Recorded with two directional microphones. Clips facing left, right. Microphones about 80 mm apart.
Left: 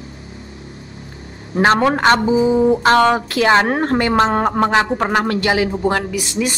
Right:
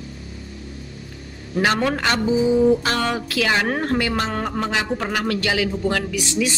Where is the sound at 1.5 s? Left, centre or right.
Left.